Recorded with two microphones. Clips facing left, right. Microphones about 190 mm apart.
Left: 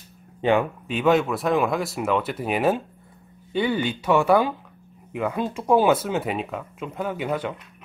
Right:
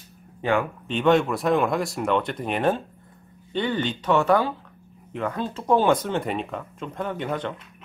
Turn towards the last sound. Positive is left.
turn(degrees=5)  # may be behind; listen again after turning